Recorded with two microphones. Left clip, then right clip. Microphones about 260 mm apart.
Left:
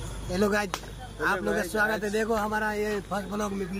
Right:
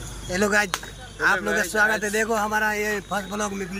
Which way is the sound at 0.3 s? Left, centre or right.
Centre.